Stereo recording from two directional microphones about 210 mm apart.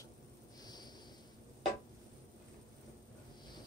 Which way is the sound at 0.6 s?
20° left (ahead or behind).